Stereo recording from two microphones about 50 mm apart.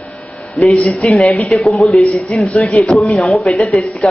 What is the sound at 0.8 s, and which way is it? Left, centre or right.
Speech, left.